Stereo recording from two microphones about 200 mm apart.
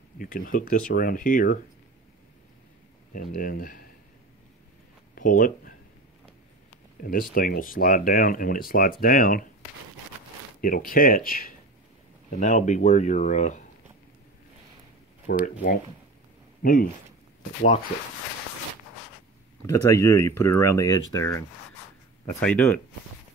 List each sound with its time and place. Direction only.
0.2 s speech: 45° left (ahead or behind)
3.1 s speech: 45° left (ahead or behind)
5.1 s speech: 40° left (ahead or behind)
7.0 s speech: 45° left (ahead or behind)
10.6 s speech: 45° left (ahead or behind)
15.3 s speech: 55° left (ahead or behind)
16.6 s speech: 45° left (ahead or behind)
19.6 s speech: 15° left (ahead or behind)